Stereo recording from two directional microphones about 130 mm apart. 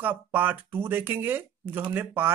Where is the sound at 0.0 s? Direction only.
15° right (ahead or behind).